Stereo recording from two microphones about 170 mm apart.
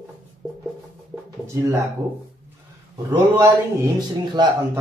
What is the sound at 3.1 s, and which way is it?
A man's voice, 25° right (ahead or behind).